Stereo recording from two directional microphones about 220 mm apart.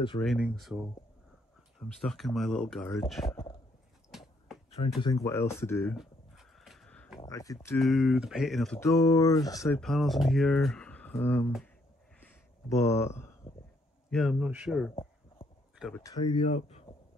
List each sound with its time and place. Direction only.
0.2 s speech: centre (ahead or behind)
4.1 s a sound: centre (ahead or behind)
5.0 s speech: 15° left (ahead or behind)
5.9 s a sound: centre (ahead or behind)
7.2 s speech: 15° left (ahead or behind)
7.8 s speech: centre (ahead or behind)
8.8 s speech: 15° left (ahead or behind)
9.8 s speech: centre (ahead or behind)
12.6 s speech: 15° left (ahead or behind)
14.1 s speech: centre (ahead or behind)
16.0 s speech: 20° left (ahead or behind)